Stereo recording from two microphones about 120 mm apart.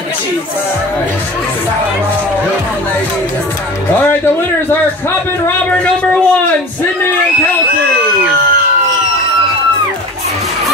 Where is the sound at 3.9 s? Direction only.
15° left (ahead or behind).